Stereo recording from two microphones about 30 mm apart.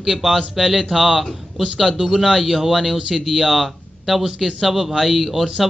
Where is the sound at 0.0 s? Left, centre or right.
Centre.